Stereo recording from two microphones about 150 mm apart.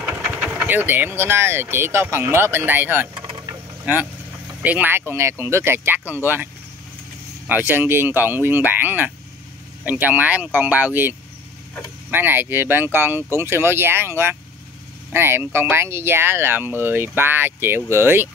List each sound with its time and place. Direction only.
0.0 s speech: 10° right (ahead or behind)
3.2 s vehicle: 30° right (ahead or behind)
3.8 s speech: 10° right (ahead or behind)